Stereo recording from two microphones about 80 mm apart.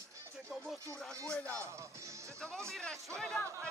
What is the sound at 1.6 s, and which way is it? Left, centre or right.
Music, right.